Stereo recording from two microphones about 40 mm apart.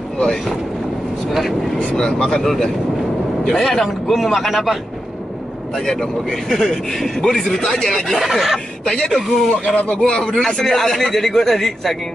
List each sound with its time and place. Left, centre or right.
1.3 s speech: centre
2.0 s speech: centre
2.4 s speech: centre
6.5 s speech: centre
8.2 s speech: centre
8.8 s speech: left
9.8 s speech: left
10.4 s speech: centre